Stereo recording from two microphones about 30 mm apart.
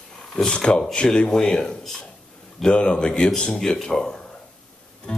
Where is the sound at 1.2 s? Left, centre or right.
Centre.